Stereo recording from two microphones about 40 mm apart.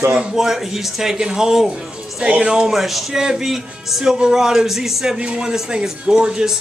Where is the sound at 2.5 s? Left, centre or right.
Centre.